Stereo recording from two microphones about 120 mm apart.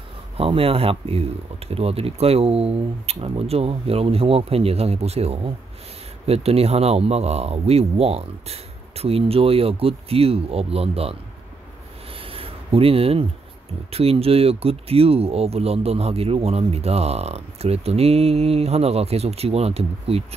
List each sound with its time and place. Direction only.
0.4 s speech: 50° right (ahead or behind)
12.2 s a sound: 50° right (ahead or behind)
13.9 s speech: 55° right (ahead or behind)